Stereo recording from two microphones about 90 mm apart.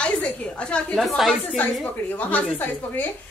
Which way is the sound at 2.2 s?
20° left (ahead or behind).